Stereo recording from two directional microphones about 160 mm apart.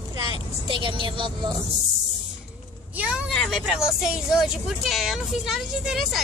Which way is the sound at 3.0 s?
5° right (ahead or behind).